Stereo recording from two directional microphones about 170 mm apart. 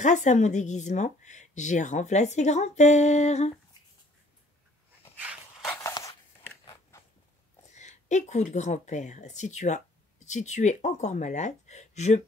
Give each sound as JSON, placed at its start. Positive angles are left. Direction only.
{"t": 0.0, "sound": "speech", "side_deg": 45}
{"t": 5.2, "sound": "walk", "side_deg": -10}
{"t": 5.7, "sound": "a sound", "side_deg": 15}
{"t": 7.7, "sound": "speech", "side_deg": 45}